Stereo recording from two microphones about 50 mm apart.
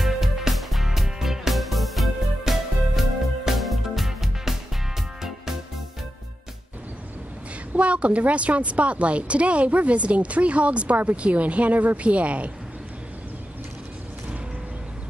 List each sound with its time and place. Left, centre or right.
0.0 s music: centre
7.7 s a woman's voice: right